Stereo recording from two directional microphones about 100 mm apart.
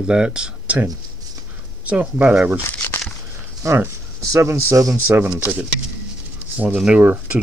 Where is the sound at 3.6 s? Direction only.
25° right (ahead or behind).